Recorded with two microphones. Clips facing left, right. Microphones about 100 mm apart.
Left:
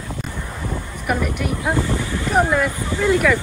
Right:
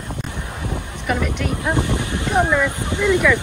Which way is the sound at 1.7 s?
20° right (ahead or behind).